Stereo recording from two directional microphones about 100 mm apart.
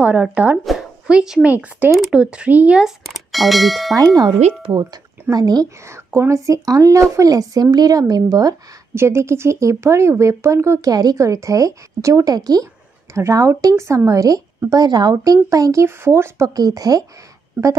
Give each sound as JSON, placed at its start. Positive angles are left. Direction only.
{"t": 0.0, "sound": "speech", "side_deg": -15}
{"t": 3.9, "sound": "a woman's voice", "side_deg": -40}
{"t": 4.4, "sound": "speech", "side_deg": -90}
{"t": 5.3, "sound": "a woman's voice", "side_deg": -40}
{"t": 8.9, "sound": "a woman's voice", "side_deg": -25}